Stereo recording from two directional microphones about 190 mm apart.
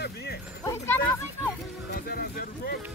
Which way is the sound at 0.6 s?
15° left (ahead or behind).